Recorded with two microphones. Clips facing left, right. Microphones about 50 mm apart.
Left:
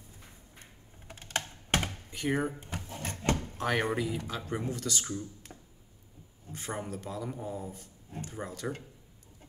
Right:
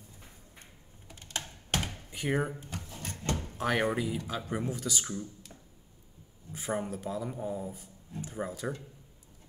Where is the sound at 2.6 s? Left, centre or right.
Left.